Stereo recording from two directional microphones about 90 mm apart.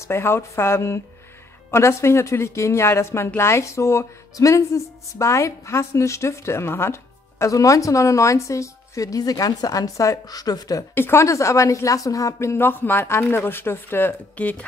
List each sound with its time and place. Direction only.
0.1 s a woman's voice: 25° left (ahead or behind); by 10.9 s 45° left (ahead or behind)
11.0 s a woman's voice: 30° left (ahead or behind)